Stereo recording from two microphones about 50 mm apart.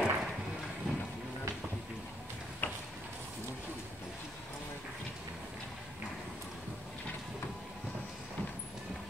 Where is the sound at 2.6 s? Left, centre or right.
Left.